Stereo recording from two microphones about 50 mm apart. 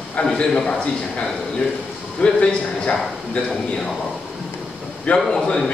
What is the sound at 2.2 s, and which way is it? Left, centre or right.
Speech, centre.